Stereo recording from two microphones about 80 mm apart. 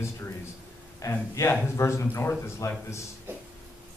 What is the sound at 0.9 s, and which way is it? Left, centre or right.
A man's voice, left.